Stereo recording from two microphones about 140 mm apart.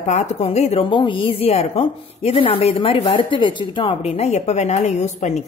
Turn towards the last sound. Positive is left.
turn(degrees=55)  # may be behind; listen again after turning